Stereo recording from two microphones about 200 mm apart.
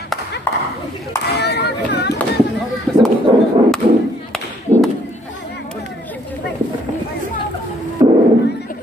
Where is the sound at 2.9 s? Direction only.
5° left (ahead or behind).